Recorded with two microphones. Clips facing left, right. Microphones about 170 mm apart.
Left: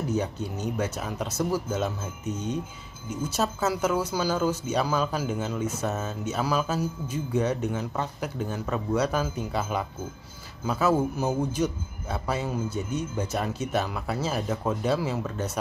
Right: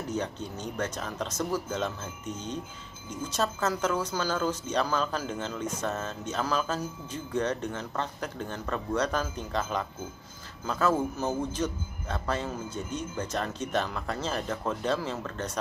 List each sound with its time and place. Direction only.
0.1 s speech: 10° left (ahead or behind)